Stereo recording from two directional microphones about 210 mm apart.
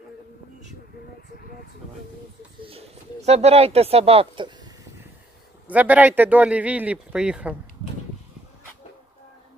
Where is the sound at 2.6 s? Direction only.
30° right (ahead or behind).